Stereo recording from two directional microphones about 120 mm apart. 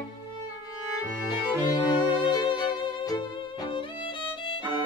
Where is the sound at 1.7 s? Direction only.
40° left (ahead or behind).